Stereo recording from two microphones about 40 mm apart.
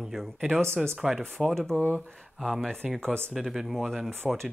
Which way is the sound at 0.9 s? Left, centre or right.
Centre.